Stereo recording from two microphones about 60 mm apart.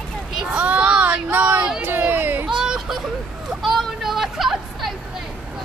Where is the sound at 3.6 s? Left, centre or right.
Centre.